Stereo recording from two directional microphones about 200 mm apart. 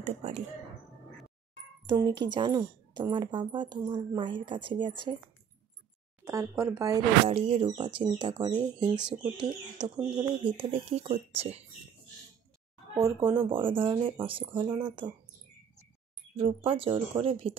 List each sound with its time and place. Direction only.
0.0 s speech: 35° right (ahead or behind)
1.9 s a woman's voice: 20° right (ahead or behind)
6.2 s speech: 15° right (ahead or behind)
7.2 s a woman's voice: 30° right (ahead or behind)
12.9 s a woman's voice: 20° right (ahead or behind)
16.3 s a woman's voice: 25° right (ahead or behind)